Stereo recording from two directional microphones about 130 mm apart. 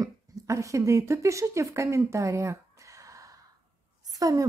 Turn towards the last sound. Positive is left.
turn(degrees=-30)  # may be behind; listen again after turning